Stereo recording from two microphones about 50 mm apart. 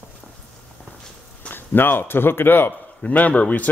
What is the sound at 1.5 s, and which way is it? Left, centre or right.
Speech, left.